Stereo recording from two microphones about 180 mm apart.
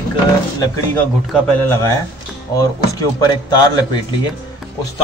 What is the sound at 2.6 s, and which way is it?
Speech, 20° left (ahead or behind).